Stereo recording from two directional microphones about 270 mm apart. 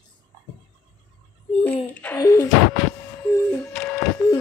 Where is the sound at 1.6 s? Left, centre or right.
Centre.